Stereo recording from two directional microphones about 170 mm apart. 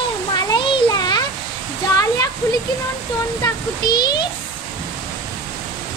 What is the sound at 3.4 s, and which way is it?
Speech, 25° left (ahead or behind).